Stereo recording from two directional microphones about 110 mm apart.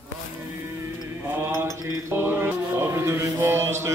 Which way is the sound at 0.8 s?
20° right (ahead or behind).